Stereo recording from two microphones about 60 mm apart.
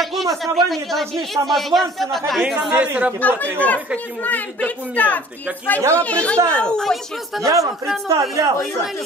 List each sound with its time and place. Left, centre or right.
0.0 s a sound: centre
0.4 s speech: centre
2.5 s speech: centre
2.8 s speech: right
3.2 s a woman's voice: left
5.8 s speech: right
6.0 s a woman's voice: left
6.3 s a child's voice: right
6.6 s speech: centre
8.1 s speech: right